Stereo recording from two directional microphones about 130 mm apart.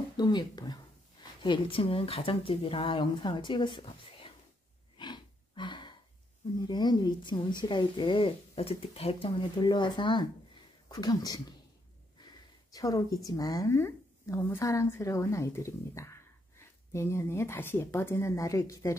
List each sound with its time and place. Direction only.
0.2 s speech: 30° left (ahead or behind)
4.9 s gasp: 35° left (ahead or behind)
6.7 s speech: 35° left (ahead or behind)
12.2 s a sound: 35° left (ahead or behind)
12.7 s a woman's voice: 30° left (ahead or behind)